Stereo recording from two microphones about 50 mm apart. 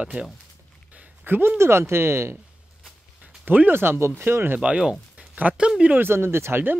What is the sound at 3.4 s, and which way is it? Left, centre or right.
Speech, right.